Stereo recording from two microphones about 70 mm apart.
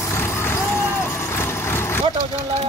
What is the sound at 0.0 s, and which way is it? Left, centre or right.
Vehicle, left.